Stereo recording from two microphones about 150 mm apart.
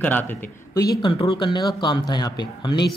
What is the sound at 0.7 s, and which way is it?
Speech, 25° left (ahead or behind).